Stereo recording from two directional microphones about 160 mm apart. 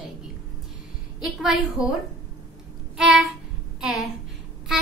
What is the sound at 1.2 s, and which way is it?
Speech, 5° right (ahead or behind).